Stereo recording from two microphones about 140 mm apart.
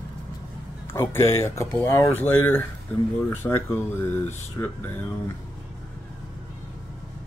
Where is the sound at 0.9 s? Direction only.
20° left (ahead or behind).